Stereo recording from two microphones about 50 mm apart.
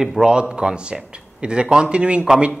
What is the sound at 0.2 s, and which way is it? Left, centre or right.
A man's voice, centre.